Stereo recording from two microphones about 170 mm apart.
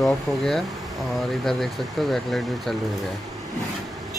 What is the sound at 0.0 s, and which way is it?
Speech, centre (ahead or behind).